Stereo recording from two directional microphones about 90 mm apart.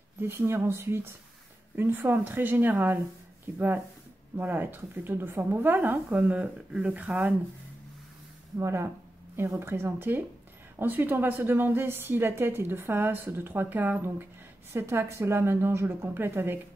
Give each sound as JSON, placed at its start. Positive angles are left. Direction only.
{"t": 0.2, "sound": "a woman's voice", "side_deg": -30}
{"t": 8.5, "sound": "a woman's voice", "side_deg": -30}